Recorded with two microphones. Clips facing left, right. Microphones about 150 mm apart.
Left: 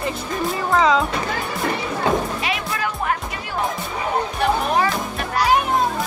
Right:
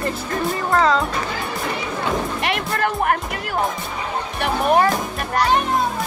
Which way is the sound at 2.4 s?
60° right (ahead or behind).